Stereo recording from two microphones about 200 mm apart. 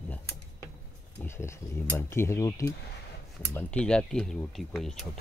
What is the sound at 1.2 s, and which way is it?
Speech, 10° left (ahead or behind).